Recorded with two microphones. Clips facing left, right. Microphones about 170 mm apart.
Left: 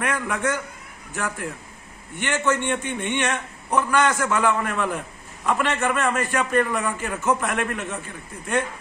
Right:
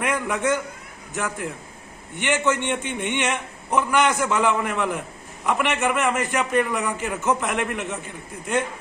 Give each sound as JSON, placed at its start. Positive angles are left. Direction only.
{"t": 0.0, "sound": "a man's voice", "side_deg": -20}